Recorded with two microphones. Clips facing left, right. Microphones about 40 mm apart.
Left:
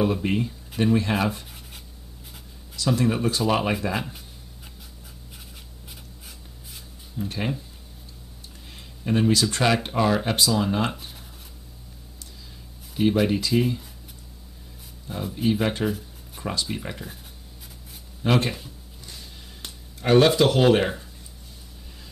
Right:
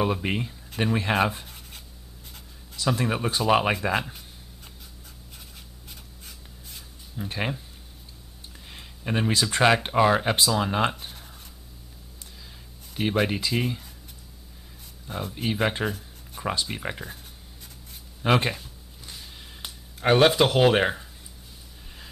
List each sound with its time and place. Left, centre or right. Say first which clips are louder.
0.0 s speech: left 3 dB; centre
2.7 s speech: left 3 dB; centre
7.2 s speech: left 1 dB; right
8.7 s speech: left 4 dB; centre
12.9 s speech: left 4 dB; centre
15.0 s speech: left 5 dB; centre
16.4 s a sound: right 2 dB; centre
16.7 s speech: right 1 dB; centre
18.2 s speech: even; centre
19.0 s a sound: right 1 dB; centre
20.0 s speech: left 1 dB; right